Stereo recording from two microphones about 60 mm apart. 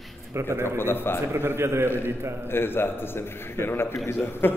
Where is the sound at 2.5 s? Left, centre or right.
Left.